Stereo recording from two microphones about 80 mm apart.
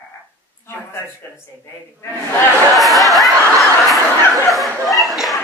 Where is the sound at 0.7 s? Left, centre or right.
Left.